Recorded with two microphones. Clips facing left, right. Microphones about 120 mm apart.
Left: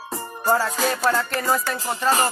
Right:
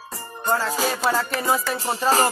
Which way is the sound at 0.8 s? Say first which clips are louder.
Left 1 dB; 5° right (ahead or behind).